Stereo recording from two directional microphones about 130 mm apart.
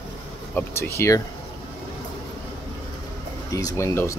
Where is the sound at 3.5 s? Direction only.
25° left (ahead or behind).